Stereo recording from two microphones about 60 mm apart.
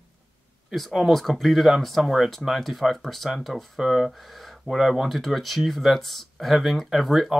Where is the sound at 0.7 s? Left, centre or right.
Centre.